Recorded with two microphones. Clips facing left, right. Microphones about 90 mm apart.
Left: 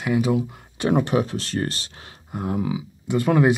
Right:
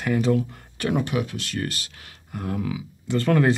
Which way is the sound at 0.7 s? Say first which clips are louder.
Left 4 dB; 30° left (ahead or behind).